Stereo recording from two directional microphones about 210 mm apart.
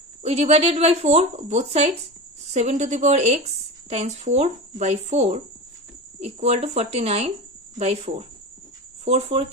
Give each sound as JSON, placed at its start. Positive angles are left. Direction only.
{"t": 0.2, "sound": "a woman's voice", "side_deg": -30}